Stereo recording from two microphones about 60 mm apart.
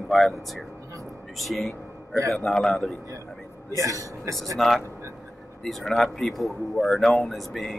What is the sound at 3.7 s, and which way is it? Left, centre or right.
Speech, right.